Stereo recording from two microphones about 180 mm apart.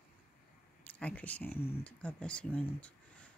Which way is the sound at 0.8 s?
5° left (ahead or behind).